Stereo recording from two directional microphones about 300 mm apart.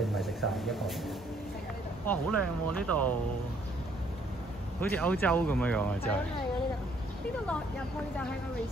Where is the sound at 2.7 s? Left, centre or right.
Centre.